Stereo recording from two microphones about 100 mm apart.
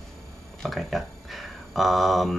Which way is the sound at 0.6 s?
Centre (ahead or behind).